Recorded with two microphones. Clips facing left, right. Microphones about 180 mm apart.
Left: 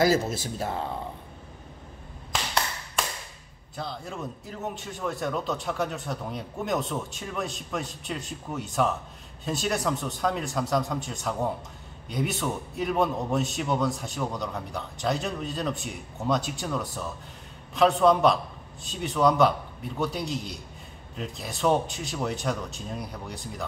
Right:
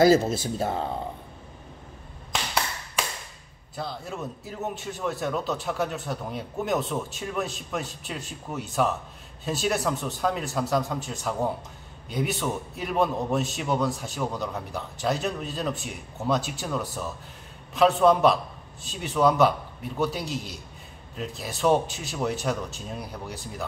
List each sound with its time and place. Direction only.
0.0 s speech: 25° right (ahead or behind)
3.7 s a man's voice: centre (ahead or behind)